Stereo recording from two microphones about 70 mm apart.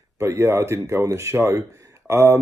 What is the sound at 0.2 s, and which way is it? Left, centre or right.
Speech, right.